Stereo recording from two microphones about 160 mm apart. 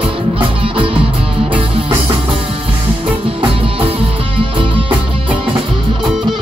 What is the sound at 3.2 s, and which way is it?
Music, 35° right (ahead or behind).